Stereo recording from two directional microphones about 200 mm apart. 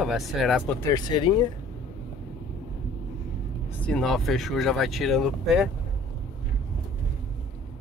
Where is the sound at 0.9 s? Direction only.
20° left (ahead or behind).